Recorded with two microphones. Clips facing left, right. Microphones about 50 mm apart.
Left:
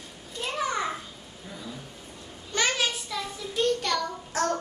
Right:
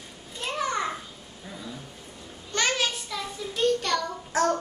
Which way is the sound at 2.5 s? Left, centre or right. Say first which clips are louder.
Even; centre.